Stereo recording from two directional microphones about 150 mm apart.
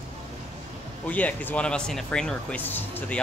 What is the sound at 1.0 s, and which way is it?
Speech, 10° left (ahead or behind).